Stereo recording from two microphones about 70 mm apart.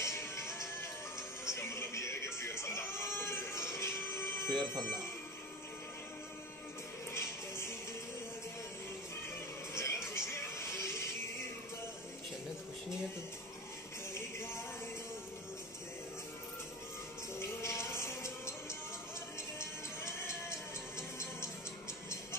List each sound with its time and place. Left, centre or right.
0.0 s music: left
7.2 s music: left
9.8 s music: left
14.1 s music: left
17.4 s music: left